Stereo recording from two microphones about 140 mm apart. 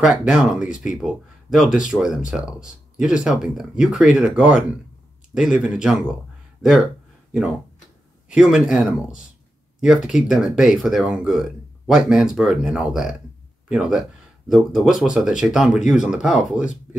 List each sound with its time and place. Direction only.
0.0 s speech: 5° right (ahead or behind)
8.3 s speech: 5° right (ahead or behind)